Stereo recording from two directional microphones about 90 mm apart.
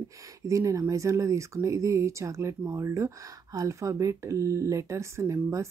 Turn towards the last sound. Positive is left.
turn(degrees=-35)  # may be behind; listen again after turning